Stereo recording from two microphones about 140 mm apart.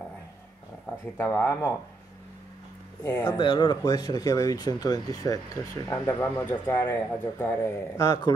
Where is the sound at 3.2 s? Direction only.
35° left (ahead or behind); by 7.5 s 20° left (ahead or behind).